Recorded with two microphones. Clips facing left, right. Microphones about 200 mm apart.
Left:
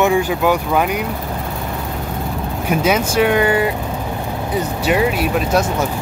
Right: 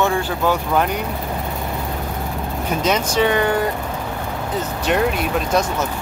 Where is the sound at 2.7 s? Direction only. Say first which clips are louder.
Left 4 dB; 10° left (ahead or behind).